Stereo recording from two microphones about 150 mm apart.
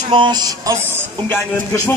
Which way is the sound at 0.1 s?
30° right (ahead or behind).